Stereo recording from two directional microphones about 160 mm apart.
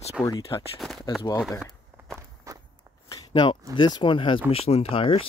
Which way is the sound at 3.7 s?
30° left (ahead or behind).